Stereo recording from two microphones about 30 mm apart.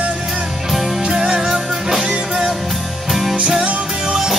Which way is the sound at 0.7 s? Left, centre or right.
Centre.